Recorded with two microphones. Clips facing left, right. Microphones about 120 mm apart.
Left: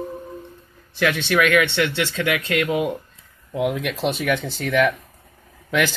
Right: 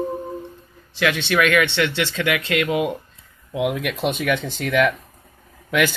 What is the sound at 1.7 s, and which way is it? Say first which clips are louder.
Speech: even; 45° left (ahead or behind).